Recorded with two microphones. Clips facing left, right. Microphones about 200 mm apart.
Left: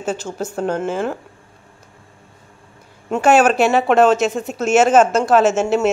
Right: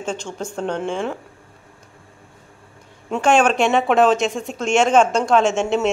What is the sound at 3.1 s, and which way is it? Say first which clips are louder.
Speech: left 3 dB; 5° left (ahead or behind).